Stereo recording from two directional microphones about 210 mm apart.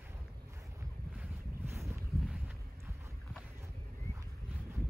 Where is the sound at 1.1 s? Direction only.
10° right (ahead or behind).